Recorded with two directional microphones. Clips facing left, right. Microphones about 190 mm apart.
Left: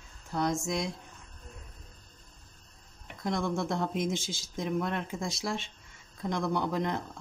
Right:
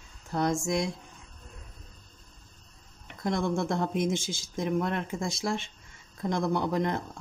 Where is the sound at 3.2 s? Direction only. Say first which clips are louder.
Right 3 dB; 50° right (ahead or behind).